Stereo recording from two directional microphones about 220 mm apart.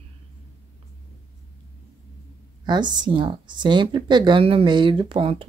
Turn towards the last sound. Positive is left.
turn(degrees=-25)  # may be behind; listen again after turning